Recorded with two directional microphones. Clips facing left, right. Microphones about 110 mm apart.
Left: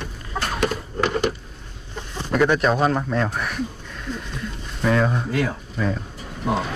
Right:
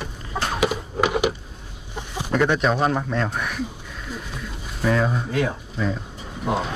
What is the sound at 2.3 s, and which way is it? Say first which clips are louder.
Speech: left 2 dB; centre (ahead or behind).